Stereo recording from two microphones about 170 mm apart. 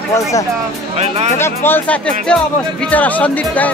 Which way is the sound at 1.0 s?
40° right (ahead or behind).